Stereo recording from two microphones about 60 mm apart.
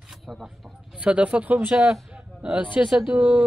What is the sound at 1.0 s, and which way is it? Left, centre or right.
Speech, right.